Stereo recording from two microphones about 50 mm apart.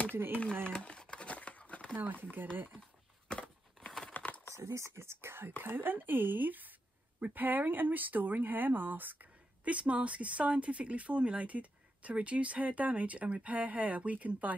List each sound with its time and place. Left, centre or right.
0.1 s speech: right
0.7 s crumpling: centre
3.3 s a sound: centre
4.1 s typing: left
4.6 s speech: right
9.7 s speech: right